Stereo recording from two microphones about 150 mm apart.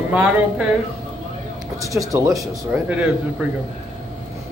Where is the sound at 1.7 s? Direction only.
20° right (ahead or behind).